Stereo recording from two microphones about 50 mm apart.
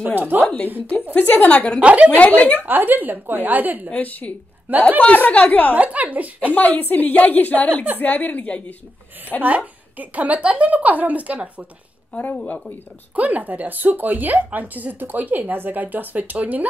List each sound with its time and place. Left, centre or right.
0.0 s a woman's voice: right
1.1 s a woman's voice: left
1.8 s a woman's voice: right
2.1 s speech: left
2.6 s a woman's voice: right
3.9 s a woman's voice: left
4.6 s a woman's voice: right
5.1 s a woman's voice: left
5.8 s a woman's voice: right
6.5 s a woman's voice: left
9.9 s a woman's voice: right
12.1 s a woman's voice: left
13.1 s a woman's voice: right